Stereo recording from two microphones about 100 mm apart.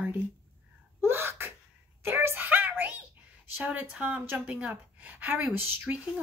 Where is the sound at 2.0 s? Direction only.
25° right (ahead or behind).